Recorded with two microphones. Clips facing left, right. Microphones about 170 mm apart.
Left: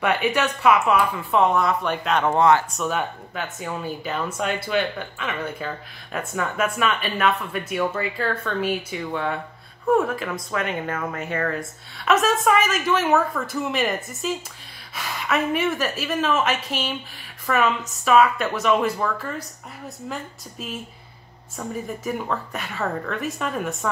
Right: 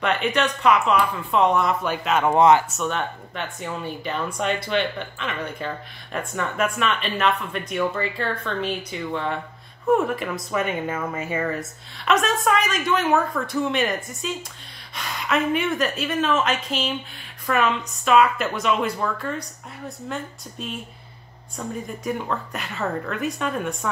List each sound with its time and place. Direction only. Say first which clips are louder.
0.0 s speech: left 1 dB; 10° left (ahead or behind)
2.3 s speech: right 2 dB; 20° right (ahead or behind)
2.8 s speech: left 1 dB; 5° left (ahead or behind)